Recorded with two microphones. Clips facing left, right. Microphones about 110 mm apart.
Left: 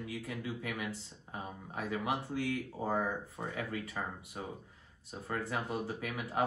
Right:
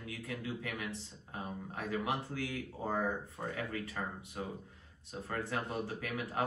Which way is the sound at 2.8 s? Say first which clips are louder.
Right 1 dB; centre (ahead or behind).